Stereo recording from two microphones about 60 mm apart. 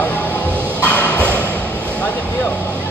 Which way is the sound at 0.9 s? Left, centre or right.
Left.